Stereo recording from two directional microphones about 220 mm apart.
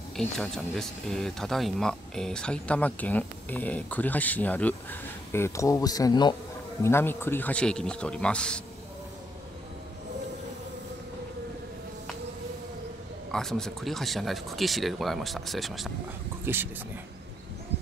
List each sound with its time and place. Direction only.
0.1 s speech: centre (ahead or behind)
13.3 s speech: centre (ahead or behind)